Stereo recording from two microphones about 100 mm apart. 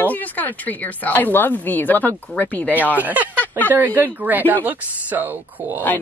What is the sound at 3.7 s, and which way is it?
Speech, 20° right (ahead or behind).